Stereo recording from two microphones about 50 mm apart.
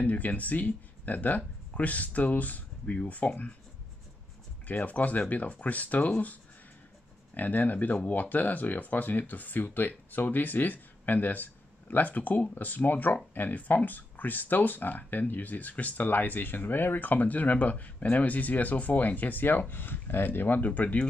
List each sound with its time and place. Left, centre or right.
0.0 s speech: left
4.6 s speech: left
7.3 s speech: left